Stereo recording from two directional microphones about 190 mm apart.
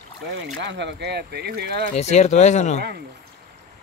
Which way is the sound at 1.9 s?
35° left (ahead or behind).